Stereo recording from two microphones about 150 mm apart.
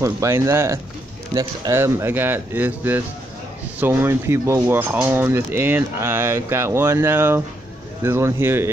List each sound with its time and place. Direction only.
0.0 s speech: 20° right (ahead or behind)